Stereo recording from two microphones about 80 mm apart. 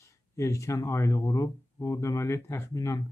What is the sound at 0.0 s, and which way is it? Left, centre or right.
Speech, left.